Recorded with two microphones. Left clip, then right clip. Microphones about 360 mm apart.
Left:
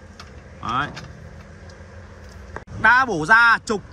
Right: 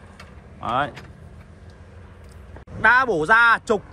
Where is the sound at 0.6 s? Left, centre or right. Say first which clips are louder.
Right 1 dB; centre.